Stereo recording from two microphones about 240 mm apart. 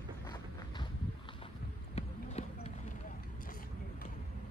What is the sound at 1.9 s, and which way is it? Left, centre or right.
Clip-clop, left.